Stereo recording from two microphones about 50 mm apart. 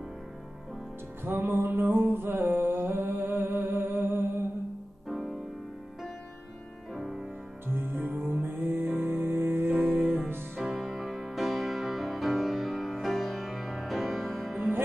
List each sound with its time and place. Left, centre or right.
1.4 s music: right
5.0 s music: centre
6.9 s music: centre
7.6 s music: right
10.6 s music: centre